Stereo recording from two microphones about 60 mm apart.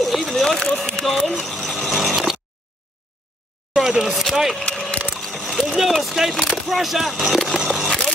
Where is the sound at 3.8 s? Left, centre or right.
Centre.